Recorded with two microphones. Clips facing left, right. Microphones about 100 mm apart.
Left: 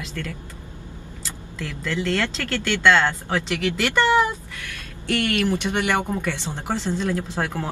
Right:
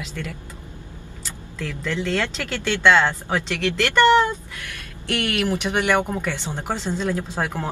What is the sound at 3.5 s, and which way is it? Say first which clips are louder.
Speech: right 1 dB; 5° left (ahead or behind).